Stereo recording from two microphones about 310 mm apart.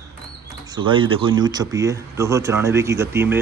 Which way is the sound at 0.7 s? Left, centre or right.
Centre.